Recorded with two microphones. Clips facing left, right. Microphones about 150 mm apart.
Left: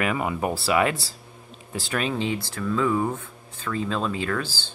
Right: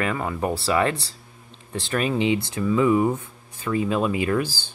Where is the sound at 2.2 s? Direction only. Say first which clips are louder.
Right 5 dB; 15° right (ahead or behind).